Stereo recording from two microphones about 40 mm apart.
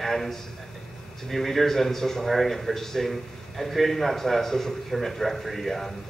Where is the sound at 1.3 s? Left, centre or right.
Centre.